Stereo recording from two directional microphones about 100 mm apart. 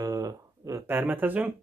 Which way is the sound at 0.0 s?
35° right (ahead or behind).